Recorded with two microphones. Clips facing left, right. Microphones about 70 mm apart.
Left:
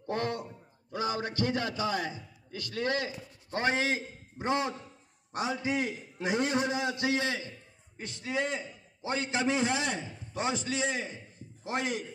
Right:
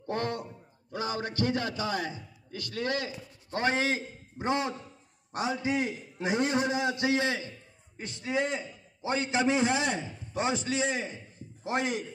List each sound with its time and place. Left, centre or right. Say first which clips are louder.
0.0 s a sound: even; centre
0.9 s a man's voice: even; centre
2.7 s a man's voice: left 1 dB; left
3.7 s a man's voice: right 1 dB; centre
4.5 s a man's voice: right 1 dB; centre; by 12.0 s right